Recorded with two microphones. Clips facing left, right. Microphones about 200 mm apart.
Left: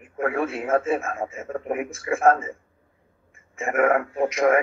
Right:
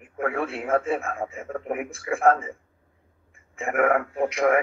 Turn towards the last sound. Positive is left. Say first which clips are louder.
# left 2 dB
turn(degrees=20)  # may be behind; listen again after turning